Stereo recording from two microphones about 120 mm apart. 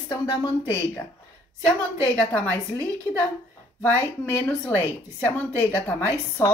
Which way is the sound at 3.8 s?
15° left (ahead or behind).